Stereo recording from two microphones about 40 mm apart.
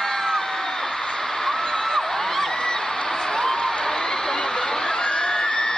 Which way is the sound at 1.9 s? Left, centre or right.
Centre.